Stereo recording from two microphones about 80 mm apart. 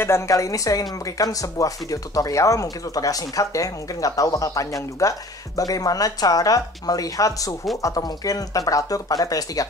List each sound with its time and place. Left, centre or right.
0.0 s speech: left